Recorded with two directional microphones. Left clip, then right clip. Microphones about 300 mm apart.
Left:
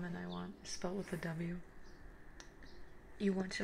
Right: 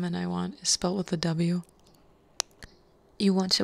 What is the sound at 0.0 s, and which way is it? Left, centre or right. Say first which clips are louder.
Speech: right 13 dB; right.